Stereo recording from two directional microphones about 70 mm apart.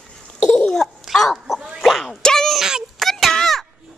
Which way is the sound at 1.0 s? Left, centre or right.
Centre.